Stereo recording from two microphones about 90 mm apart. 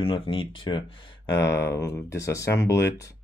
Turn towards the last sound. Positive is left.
turn(degrees=35)  # may be behind; listen again after turning